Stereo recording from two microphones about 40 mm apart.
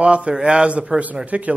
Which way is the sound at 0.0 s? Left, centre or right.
Right.